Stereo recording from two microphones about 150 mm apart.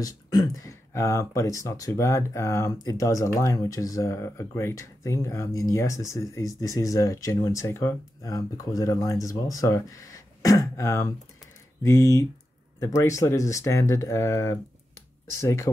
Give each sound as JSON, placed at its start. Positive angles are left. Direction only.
{"t": 0.0, "sound": "speech", "side_deg": 25}